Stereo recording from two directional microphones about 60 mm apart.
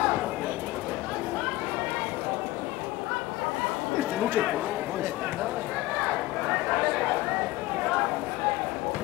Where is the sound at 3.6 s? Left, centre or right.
Centre.